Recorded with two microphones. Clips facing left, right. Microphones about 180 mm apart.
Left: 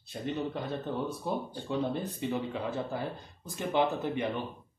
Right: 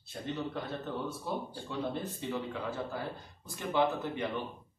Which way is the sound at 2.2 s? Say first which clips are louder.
Left 4 dB; 15° left (ahead or behind).